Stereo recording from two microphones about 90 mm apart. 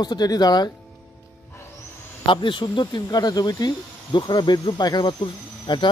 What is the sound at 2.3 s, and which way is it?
Speech, 65° left (ahead or behind).